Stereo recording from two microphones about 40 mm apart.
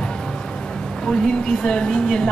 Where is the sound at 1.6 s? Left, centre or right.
Centre.